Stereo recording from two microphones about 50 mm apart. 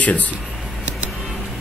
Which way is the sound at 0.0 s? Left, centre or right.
Left.